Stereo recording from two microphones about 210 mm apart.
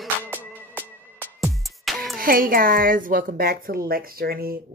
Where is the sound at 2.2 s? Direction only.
45° right (ahead or behind).